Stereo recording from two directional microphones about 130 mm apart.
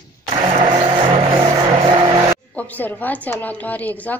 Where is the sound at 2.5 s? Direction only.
10° left (ahead or behind).